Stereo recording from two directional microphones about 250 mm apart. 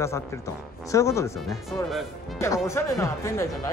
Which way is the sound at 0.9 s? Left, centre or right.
Centre.